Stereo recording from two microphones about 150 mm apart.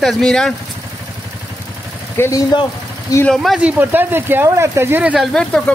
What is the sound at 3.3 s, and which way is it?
Speech, centre (ahead or behind).